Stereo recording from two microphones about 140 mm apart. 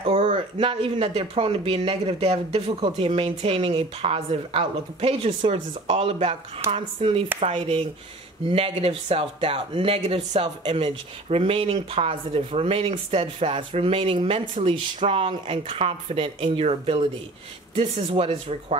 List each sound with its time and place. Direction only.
0.0 s speech: 40° right (ahead or behind)